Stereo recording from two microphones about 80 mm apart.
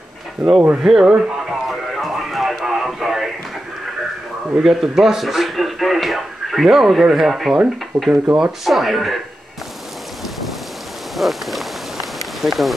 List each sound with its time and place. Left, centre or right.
0.4 s speech: centre
1.7 s music: centre
4.6 s speech: centre
7.9 s speech: right
8.4 s speech: centre
11.1 s a sound: centre